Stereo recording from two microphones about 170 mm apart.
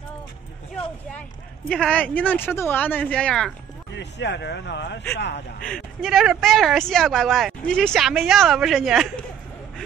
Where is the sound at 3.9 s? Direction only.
90° left.